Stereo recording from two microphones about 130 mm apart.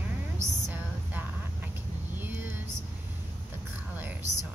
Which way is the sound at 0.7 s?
15° right (ahead or behind).